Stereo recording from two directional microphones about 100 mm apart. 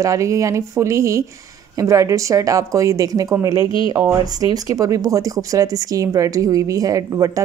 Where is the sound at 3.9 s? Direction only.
35° right (ahead or behind).